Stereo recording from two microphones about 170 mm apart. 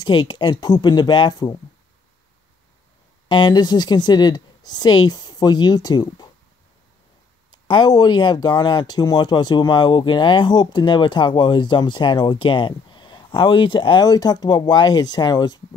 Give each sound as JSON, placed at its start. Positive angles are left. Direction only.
{"t": 0.0, "sound": "speech", "side_deg": 25}
{"t": 3.3, "sound": "speech", "side_deg": 25}
{"t": 7.5, "sound": "speech", "side_deg": 25}